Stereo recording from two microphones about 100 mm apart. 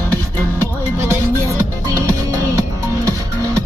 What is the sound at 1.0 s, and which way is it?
Music, 30° right (ahead or behind).